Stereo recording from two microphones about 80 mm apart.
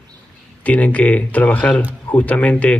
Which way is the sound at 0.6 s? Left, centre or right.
Centre.